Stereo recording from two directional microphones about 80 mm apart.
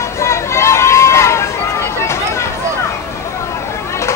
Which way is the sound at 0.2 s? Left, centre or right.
Left.